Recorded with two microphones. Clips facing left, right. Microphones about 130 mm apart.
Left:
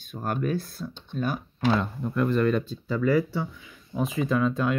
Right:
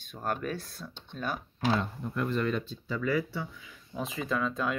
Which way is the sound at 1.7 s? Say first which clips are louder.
Left 4 dB; 90° left.